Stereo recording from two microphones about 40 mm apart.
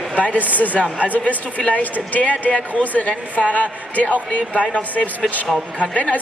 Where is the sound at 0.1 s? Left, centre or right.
Left.